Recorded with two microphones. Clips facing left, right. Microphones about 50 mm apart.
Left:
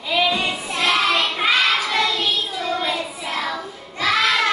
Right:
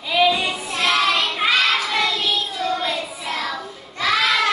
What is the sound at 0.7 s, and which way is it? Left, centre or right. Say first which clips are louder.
Child singing: even; centre.